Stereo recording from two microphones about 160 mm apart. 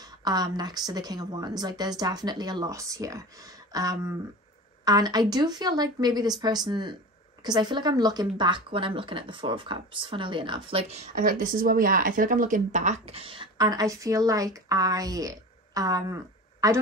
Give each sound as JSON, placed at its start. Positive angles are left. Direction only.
{"t": 0.0, "sound": "a woman's voice", "side_deg": -25}